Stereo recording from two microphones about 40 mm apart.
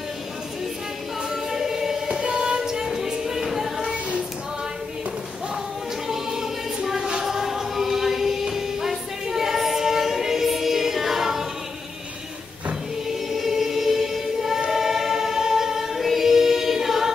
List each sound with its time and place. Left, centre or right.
1.3 s choir: centre
2.2 s music: right
2.6 s music: centre
6.0 s choir: centre
13.3 s choir: centre